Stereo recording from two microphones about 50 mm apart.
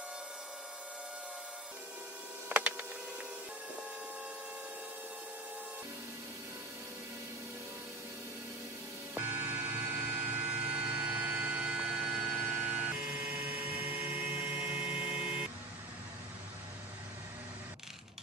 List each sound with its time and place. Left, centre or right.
2.5 s printer: right
9.1 s vehicle: right; by 12.4 s centre
12.4 s music: right
13.7 s helicopter: right
14.8 s vehicle: right